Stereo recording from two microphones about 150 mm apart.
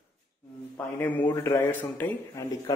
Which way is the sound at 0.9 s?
10° left (ahead or behind).